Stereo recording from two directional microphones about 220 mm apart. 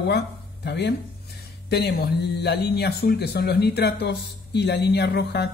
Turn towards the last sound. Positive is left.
turn(degrees=50)  # may be behind; listen again after turning